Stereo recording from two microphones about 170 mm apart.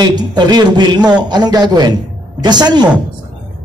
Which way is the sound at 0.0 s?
25° right (ahead or behind).